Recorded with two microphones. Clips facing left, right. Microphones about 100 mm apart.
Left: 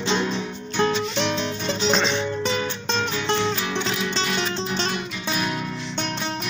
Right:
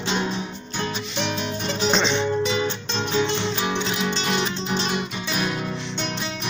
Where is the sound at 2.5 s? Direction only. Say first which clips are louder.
Even; 25° right (ahead or behind).